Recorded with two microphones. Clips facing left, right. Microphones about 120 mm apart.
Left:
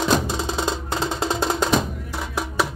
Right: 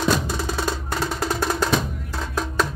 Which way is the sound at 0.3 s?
20° left (ahead or behind).